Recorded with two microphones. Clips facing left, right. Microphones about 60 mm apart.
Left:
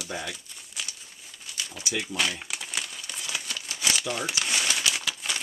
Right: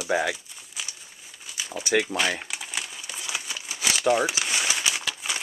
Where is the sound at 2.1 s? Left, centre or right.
Right.